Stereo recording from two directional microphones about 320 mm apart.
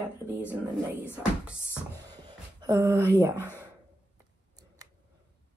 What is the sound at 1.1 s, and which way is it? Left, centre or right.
Speech, centre.